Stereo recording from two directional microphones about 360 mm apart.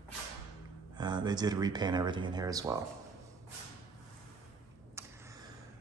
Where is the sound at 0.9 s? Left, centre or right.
Centre.